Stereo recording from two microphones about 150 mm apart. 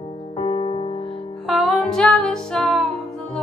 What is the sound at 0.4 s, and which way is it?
Music, 40° left (ahead or behind).